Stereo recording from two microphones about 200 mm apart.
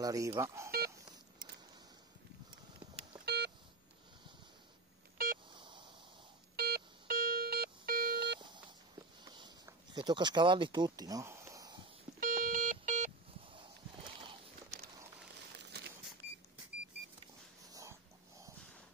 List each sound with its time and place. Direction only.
0.0 s speech: 15° right (ahead or behind)
0.7 s telephone dialing: 50° right (ahead or behind)
2.8 s beep: 25° right (ahead or behind)
3.3 s beep: 55° right (ahead or behind)
5.1 s a sound: 45° right (ahead or behind)
5.5 s a sound: 25° right (ahead or behind)
6.5 s music: 50° right (ahead or behind)
8.4 s beep: 25° right (ahead or behind)
9.2 s a sound: 20° right (ahead or behind)
12.2 s alarm clock: 40° right (ahead or behind)
14.2 s walk: 30° right (ahead or behind)
15.7 s a sound: 55° right (ahead or behind)